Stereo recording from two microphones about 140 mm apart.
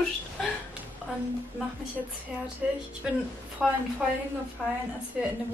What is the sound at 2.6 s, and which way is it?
A woman's voice, 10° right (ahead or behind).